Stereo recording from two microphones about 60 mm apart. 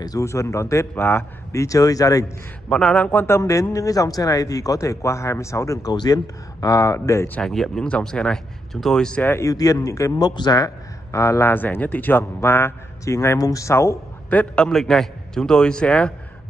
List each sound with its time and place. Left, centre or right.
0.2 s speech: left
0.9 s speech: left
1.5 s speech: left
2.7 s a man's voice: centre
3.3 s speech: left
7.4 s a man's voice: centre
9.4 s speech: left
11.5 s speech: left
13.0 s speech: left
13.4 s speech: left
14.5 s a man's voice: centre
14.8 s a man's voice: centre